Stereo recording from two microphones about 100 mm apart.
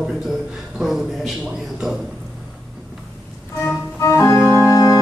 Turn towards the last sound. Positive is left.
turn(degrees=30)  # may be behind; listen again after turning